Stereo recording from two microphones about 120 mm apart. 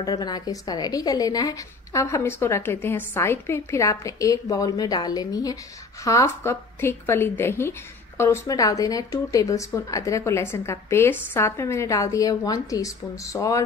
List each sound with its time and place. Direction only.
0.0 s a woman's voice: 35° left (ahead or behind)